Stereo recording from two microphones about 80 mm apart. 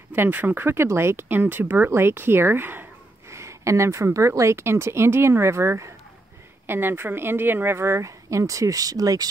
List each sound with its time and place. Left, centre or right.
0.1 s speech: right